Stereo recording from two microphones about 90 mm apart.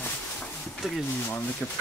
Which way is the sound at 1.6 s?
20° left (ahead or behind).